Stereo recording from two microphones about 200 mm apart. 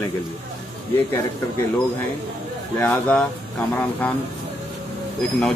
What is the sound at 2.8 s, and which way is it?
A man's voice, 10° left (ahead or behind).